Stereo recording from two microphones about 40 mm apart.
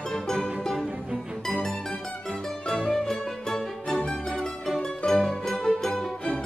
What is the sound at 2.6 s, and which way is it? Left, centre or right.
Music, centre.